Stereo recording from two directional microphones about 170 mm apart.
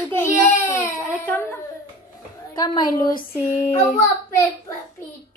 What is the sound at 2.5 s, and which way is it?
Speech, 25° left (ahead or behind).